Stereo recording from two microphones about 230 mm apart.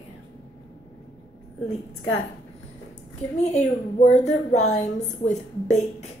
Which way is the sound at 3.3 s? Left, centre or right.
Left.